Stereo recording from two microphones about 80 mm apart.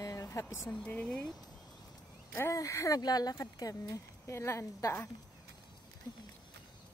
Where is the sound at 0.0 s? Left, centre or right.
Left.